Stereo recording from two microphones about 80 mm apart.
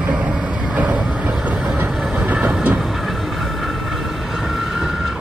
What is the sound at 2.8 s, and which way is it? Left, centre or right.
Vehicle, centre.